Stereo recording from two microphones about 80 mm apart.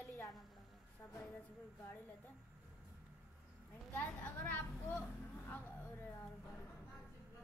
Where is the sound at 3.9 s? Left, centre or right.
Centre.